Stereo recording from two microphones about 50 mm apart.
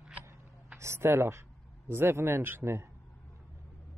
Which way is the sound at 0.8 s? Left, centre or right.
Right.